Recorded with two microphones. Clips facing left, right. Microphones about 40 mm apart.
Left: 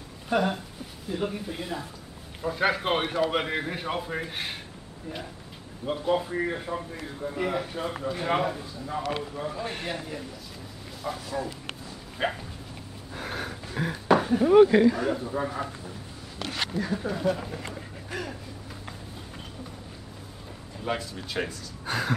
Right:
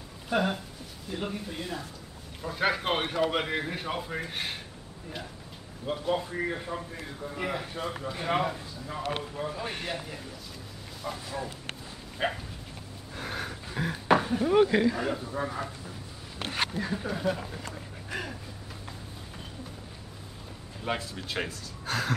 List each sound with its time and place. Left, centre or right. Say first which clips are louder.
0.3 s speech: left 2 dB; centre
1.5 s a man's voice: left 2 dB; centre
5.9 s a man's voice: left 3 dB; centre
12.2 s speech: left 2 dB; centre
13.1 s a sound: left 2 dB; centre
14.1 s speech: left 5 dB; centre
16.3 s a sound: even; right
16.8 s speech: left 3 dB; centre
20.8 s speech: left 2 dB; centre
21.8 s a man's voice: left 2 dB; centre